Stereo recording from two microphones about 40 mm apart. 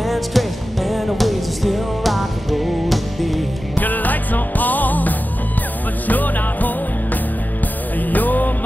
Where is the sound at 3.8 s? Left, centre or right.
Left.